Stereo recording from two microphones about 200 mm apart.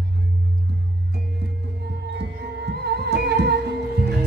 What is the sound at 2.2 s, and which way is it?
Music, 55° right (ahead or behind).